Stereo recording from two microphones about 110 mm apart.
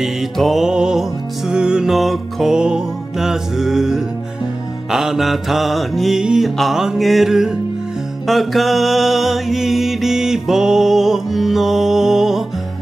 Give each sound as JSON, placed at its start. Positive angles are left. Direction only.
{"t": 0.0, "sound": "music", "side_deg": 0}